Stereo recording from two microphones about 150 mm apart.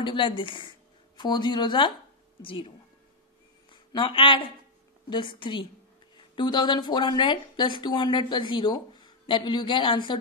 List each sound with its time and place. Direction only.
0.0 s a woman's voice: 35° left (ahead or behind)
3.7 s speech: 35° left (ahead or behind)